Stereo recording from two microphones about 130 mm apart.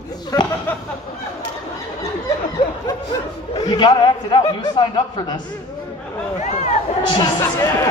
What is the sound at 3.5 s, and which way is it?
A man's voice, 35° left (ahead or behind).